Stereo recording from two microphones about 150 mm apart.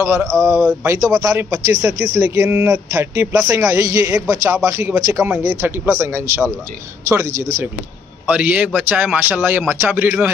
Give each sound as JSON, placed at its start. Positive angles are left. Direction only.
{"t": 0.0, "sound": "a man's voice", "side_deg": -15}